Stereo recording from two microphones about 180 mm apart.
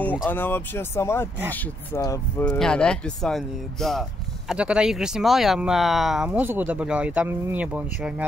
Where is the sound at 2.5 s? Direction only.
5° left (ahead or behind).